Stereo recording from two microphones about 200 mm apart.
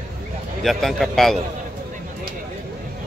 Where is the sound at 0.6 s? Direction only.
Centre (ahead or behind).